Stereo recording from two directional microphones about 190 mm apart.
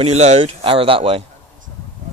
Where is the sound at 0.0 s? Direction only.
35° right (ahead or behind).